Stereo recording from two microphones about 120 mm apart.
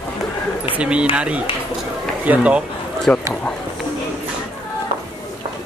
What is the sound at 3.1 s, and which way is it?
Speech, 10° left (ahead or behind).